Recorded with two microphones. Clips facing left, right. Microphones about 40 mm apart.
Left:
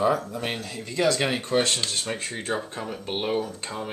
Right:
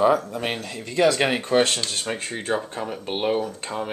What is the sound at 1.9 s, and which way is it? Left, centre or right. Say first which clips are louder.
Speech: right 2 dB; centre.